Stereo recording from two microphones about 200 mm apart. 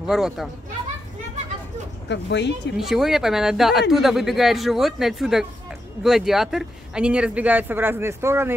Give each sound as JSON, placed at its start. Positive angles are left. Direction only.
{"t": 0.0, "sound": "speech", "side_deg": 0}
{"t": 2.0, "sound": "speech", "side_deg": 60}
{"t": 2.8, "sound": "speech", "side_deg": 0}